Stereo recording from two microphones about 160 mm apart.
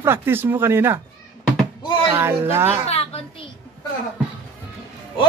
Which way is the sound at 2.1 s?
15° right (ahead or behind).